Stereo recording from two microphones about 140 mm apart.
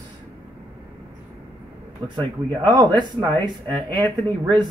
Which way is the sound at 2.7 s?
30° right (ahead or behind).